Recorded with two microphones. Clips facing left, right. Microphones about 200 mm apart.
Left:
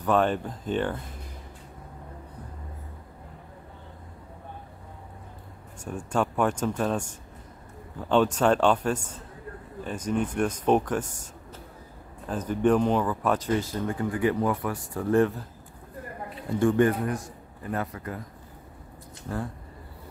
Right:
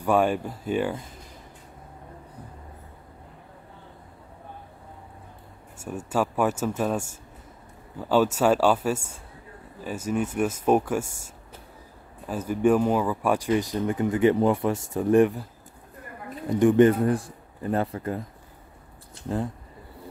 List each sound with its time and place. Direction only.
0.0 s speech: 10° right (ahead or behind)
5.8 s speech: 5° right (ahead or behind)
12.3 s speech: 10° right (ahead or behind)
16.4 s a man's voice: 20° right (ahead or behind)
19.2 s a man's voice: 20° right (ahead or behind)